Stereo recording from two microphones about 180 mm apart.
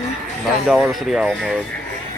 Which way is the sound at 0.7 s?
Centre (ahead or behind).